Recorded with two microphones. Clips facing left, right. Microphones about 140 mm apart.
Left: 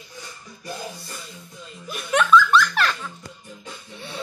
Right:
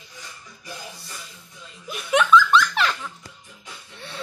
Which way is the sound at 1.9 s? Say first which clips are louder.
Even; 5° right (ahead or behind).